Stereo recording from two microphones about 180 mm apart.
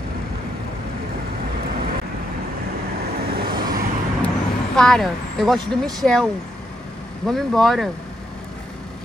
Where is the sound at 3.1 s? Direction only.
60° right (ahead or behind).